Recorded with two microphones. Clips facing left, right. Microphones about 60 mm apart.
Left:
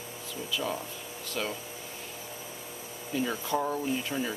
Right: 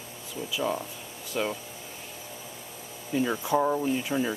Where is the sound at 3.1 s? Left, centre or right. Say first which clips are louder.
Right 4 dB; centre.